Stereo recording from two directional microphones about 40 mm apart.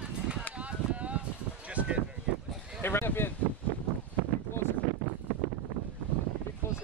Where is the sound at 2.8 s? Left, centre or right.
Left.